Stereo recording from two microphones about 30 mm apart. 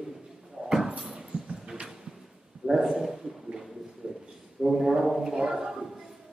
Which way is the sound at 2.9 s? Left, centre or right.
Centre.